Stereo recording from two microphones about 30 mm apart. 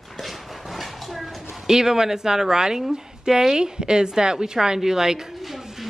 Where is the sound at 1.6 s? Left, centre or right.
Centre.